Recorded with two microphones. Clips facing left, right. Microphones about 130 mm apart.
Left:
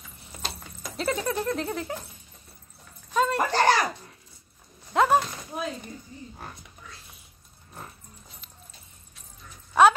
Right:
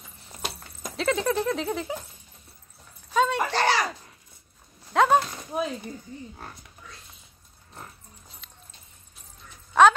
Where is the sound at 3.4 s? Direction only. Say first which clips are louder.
Left 2 dB; 45° left (ahead or behind).